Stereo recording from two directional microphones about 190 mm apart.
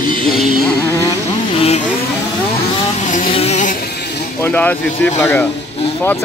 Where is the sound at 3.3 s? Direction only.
35° left (ahead or behind).